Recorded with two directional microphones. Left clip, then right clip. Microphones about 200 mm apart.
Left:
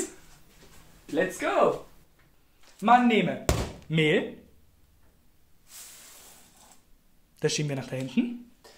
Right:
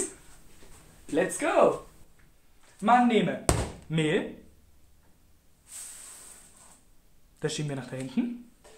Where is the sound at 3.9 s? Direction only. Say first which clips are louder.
Left 4 dB; 15° left (ahead or behind).